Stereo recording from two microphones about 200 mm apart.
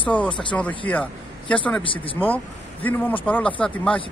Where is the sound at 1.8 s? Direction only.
25° left (ahead or behind).